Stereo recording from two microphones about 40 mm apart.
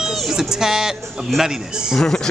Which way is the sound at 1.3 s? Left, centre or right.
Centre.